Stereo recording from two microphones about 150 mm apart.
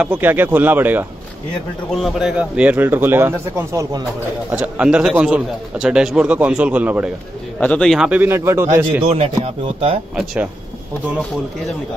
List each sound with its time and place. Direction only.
0.0 s a man's voice: 10° right (ahead or behind)
1.9 s a man's voice: centre (ahead or behind)
7.6 s speech: 5° left (ahead or behind)
8.1 s a man's voice: 15° right (ahead or behind)
9.0 s speech: 45° right (ahead or behind)
10.1 s a man's voice: 10° right (ahead or behind)